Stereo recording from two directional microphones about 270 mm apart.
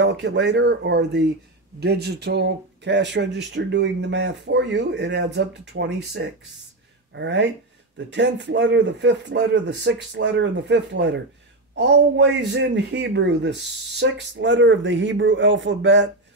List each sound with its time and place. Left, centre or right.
0.0 s speech: right